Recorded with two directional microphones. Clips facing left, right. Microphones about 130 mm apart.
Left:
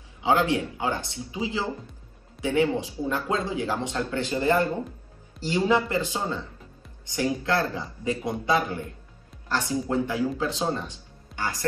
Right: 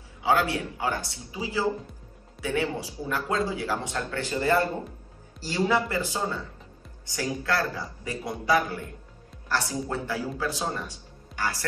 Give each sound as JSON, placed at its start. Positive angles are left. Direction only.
{"t": 0.2, "sound": "speech", "side_deg": 20}
{"t": 11.3, "sound": "music", "side_deg": 0}